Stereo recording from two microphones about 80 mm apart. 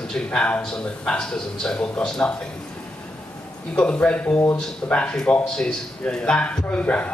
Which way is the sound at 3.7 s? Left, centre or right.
Centre.